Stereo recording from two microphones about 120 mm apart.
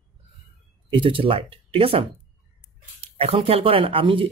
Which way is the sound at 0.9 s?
50° right (ahead or behind).